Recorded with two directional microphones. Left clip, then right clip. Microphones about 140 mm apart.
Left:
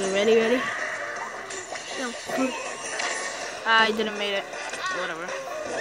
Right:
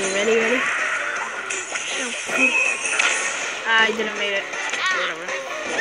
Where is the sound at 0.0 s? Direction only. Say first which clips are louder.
Right 2 dB; 20° right (ahead or behind).